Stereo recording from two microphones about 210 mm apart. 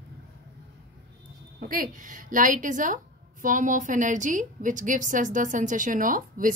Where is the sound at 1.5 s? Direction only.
40° right (ahead or behind).